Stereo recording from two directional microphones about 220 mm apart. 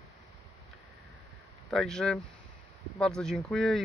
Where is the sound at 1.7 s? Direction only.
5° left (ahead or behind).